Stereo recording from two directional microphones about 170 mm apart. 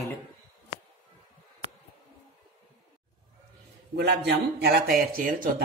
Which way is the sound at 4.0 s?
75° right (ahead or behind).